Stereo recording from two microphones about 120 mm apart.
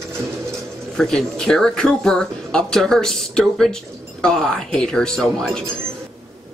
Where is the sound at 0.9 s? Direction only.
5° left (ahead or behind).